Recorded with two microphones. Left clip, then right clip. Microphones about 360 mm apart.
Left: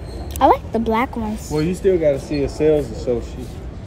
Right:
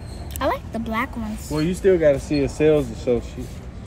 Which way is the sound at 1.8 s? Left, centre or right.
Right.